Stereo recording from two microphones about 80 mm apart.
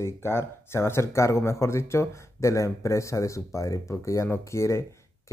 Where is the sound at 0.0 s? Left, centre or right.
Left.